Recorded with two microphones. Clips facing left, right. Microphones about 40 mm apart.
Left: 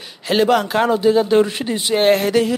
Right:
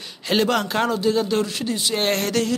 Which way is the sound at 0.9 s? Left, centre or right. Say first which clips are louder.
Left 9 dB; centre.